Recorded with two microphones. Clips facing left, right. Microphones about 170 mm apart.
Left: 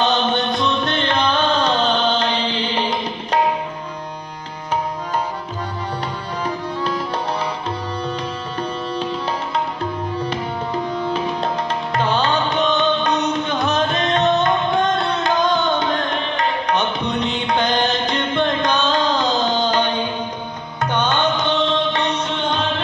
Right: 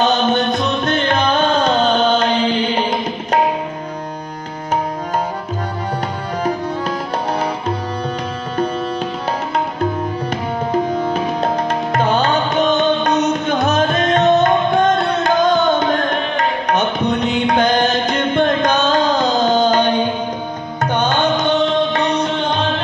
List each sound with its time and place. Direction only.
0.0 s music: 45° right (ahead or behind)
6.4 s music: 45° right (ahead or behind)
10.3 s music: 45° right (ahead or behind)